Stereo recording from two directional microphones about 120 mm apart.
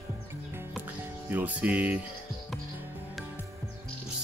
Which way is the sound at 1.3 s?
10° right (ahead or behind).